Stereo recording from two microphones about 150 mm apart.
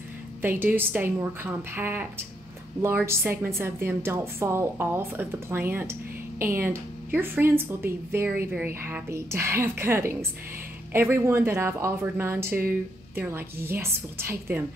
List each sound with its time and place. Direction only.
0.4 s speech: 15° right (ahead or behind)